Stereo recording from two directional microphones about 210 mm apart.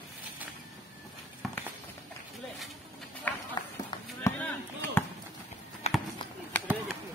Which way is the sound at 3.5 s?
20° left (ahead or behind).